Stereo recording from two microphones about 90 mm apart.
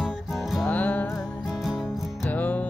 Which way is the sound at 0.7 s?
15° left (ahead or behind).